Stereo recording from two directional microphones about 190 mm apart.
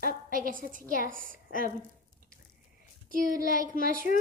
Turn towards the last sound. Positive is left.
turn(degrees=-50)  # may be behind; listen again after turning